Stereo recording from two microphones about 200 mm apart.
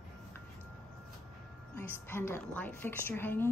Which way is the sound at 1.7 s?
10° left (ahead or behind).